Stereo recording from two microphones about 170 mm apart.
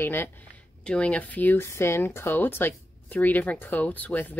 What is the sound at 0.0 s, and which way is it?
Speech, 10° left (ahead or behind).